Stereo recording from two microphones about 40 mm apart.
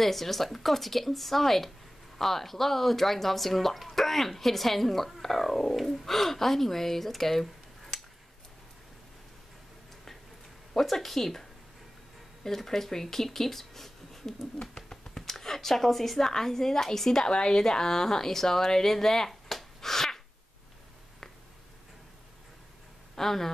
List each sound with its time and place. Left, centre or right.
0.0 s speech: centre
10.7 s speech: centre
12.4 s speech: centre
17.3 s a woman's voice: left
17.6 s speech: centre
23.1 s speech: centre